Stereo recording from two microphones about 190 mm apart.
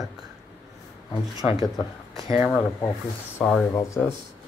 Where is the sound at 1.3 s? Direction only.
20° right (ahead or behind).